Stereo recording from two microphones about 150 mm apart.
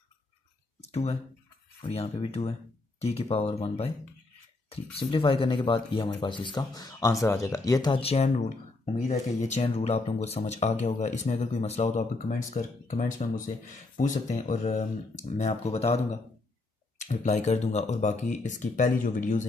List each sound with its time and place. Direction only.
0.7 s speech: 45° left (ahead or behind)
4.9 s speech: 35° left (ahead or behind)
8.0 s speech: 45° left (ahead or behind); by 13.4 s 60° left (ahead or behind)
14.2 s speech: 50° left (ahead or behind)